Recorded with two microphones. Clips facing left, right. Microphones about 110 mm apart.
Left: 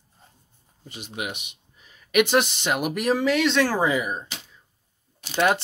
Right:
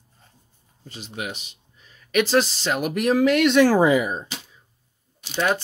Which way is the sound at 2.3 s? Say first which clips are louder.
Right 1 dB; 10° left (ahead or behind).